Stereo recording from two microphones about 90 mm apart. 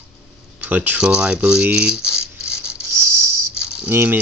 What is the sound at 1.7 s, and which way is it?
Rattle, 5° right (ahead or behind).